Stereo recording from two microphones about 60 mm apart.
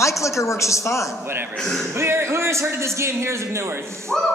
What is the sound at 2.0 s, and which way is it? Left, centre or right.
A man's voice, right.